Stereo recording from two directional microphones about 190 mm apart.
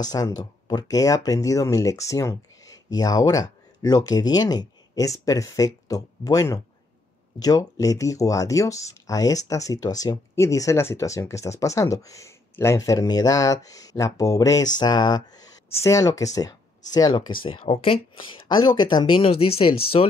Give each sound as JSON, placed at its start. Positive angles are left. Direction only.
{"t": 0.1, "sound": "speech", "side_deg": 20}